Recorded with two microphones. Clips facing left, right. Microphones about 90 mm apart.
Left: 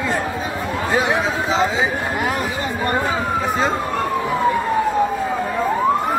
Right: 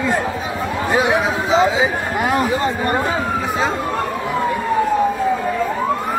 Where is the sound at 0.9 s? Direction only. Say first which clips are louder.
Right 2 dB; centre (ahead or behind).